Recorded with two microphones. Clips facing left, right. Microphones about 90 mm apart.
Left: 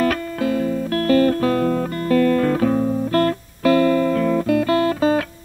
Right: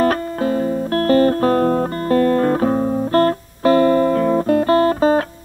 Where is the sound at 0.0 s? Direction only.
35° right (ahead or behind).